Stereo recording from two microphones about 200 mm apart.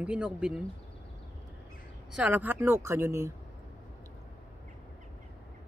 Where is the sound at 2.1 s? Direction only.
5° right (ahead or behind).